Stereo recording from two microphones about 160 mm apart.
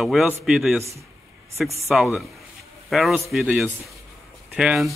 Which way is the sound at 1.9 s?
5° right (ahead or behind).